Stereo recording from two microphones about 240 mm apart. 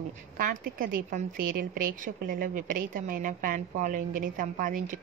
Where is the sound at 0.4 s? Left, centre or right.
Right.